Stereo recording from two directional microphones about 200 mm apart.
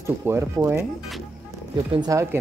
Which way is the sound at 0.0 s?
15° right (ahead or behind).